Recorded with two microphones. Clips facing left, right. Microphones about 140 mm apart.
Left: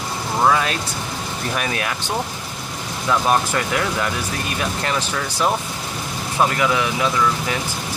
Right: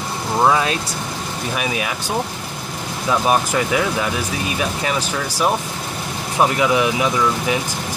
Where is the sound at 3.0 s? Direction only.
10° right (ahead or behind).